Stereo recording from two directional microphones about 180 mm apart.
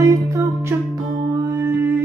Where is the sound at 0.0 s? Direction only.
20° right (ahead or behind).